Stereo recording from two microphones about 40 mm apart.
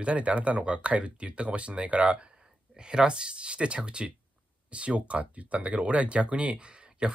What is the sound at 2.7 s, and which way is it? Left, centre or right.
Speech, centre.